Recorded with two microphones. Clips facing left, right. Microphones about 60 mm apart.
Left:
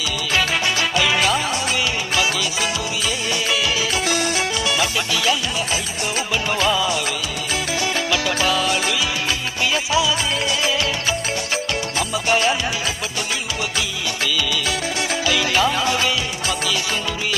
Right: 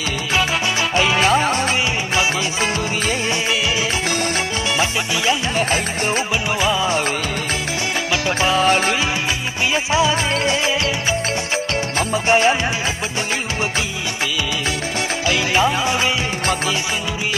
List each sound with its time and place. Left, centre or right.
0.9 s music: right
5.6 s music: right
6.5 s music of bollywood: centre
6.8 s music: right
8.1 s music: right
12.0 s music: right
15.2 s music: right